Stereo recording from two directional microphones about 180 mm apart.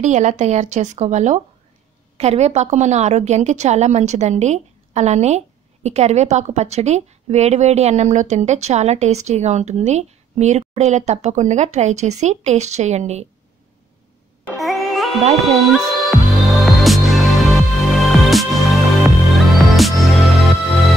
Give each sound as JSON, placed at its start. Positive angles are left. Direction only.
{"t": 0.0, "sound": "a woman's voice", "side_deg": -40}
{"t": 14.4, "sound": "a sound", "side_deg": 0}
{"t": 15.4, "sound": "speech", "side_deg": 0}
{"t": 16.6, "sound": "music", "side_deg": 0}